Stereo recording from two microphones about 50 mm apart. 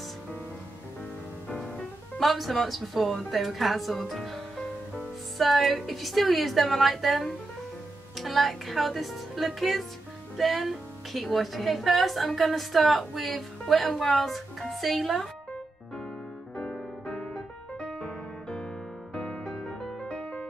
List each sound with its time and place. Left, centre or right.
2.1 s a woman's voice: centre
5.4 s a woman's voice: centre
16.5 s music: centre
19.4 s music: centre